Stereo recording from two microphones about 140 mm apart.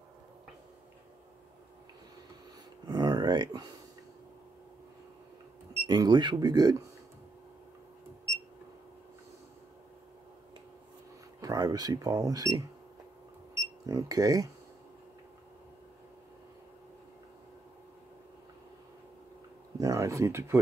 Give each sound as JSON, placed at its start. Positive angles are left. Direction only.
{"t": 2.9, "sound": "a sound", "side_deg": -30}
{"t": 5.9, "sound": "speech", "side_deg": -30}
{"t": 11.4, "sound": "speech", "side_deg": -30}
{"t": 13.8, "sound": "speech", "side_deg": -25}
{"t": 19.8, "sound": "speech", "side_deg": -25}